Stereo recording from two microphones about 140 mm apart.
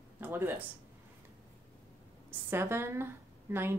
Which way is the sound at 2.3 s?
15° right (ahead or behind).